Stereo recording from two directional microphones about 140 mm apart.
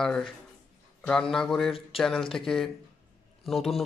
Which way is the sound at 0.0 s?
5° left (ahead or behind).